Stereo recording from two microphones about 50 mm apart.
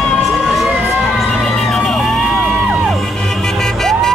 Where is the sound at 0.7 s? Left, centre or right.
Right.